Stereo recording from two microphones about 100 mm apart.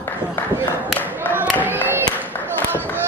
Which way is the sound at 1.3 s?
15° right (ahead or behind).